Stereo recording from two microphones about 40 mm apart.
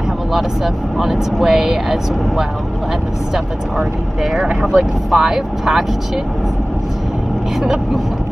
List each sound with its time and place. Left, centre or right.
1.1 s speech: centre
3.7 s speech: centre
4.4 s speech: right
4.7 s speech: centre